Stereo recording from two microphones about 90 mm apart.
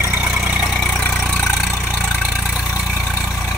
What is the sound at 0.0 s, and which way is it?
Vehicle, 20° right (ahead or behind).